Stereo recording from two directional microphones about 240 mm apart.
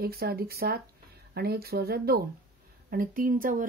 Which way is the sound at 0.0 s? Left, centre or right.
Right.